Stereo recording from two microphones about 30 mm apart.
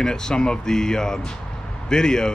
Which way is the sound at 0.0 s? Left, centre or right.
Left.